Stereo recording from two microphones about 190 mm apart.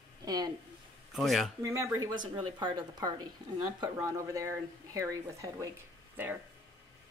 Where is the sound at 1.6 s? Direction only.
15° right (ahead or behind).